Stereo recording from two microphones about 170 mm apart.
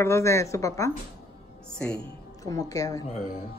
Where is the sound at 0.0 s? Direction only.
15° left (ahead or behind).